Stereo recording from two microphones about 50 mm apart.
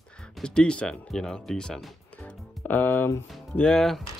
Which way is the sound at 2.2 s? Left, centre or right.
Left.